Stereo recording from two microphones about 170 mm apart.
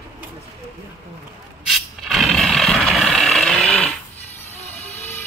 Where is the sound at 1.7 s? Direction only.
Centre (ahead or behind).